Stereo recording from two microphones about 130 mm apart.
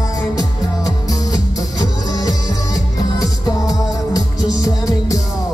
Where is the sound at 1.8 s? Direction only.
30° left (ahead or behind).